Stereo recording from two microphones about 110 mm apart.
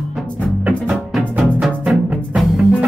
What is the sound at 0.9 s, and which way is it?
Music, 5° right (ahead or behind).